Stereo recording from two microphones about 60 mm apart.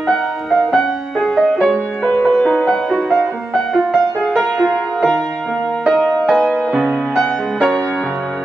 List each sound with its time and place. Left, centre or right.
0.1 s music: centre
2.2 s music: centre
2.6 s music: centre